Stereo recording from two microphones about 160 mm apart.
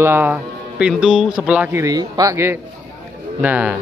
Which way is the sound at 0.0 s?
15° right (ahead or behind).